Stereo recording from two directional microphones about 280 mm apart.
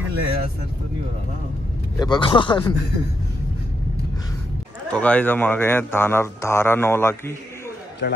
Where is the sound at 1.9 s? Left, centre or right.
Centre.